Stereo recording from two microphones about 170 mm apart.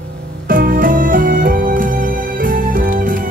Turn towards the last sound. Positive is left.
turn(degrees=-55)  # may be behind; listen again after turning